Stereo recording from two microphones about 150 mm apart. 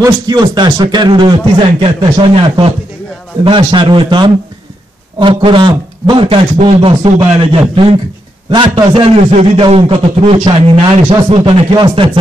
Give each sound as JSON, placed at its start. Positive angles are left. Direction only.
{"t": 0.0, "sound": "a man's voice", "side_deg": -25}